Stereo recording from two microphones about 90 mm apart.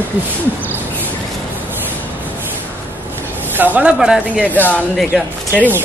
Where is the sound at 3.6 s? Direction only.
15° right (ahead or behind).